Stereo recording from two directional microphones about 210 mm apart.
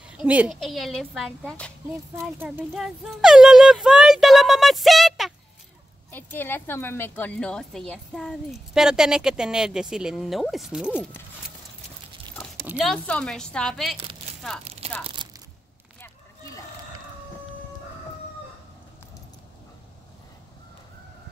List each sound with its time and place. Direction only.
0.0 s a woman's voice: 5° right (ahead or behind)
2.1 s a woman's voice: 10° right (ahead or behind)
12.6 s a woman's voice: centre (ahead or behind)
15.2 s crunch: 20° right (ahead or behind)